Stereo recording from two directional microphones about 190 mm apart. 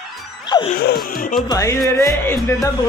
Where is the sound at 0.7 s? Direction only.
50° left (ahead or behind).